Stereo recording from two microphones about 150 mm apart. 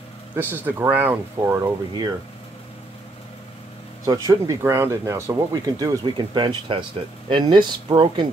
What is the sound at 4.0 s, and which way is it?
Speech, 25° right (ahead or behind).